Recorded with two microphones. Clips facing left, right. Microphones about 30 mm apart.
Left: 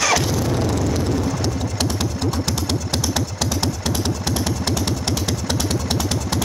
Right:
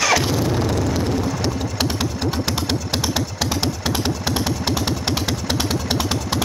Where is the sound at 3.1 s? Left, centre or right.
Centre.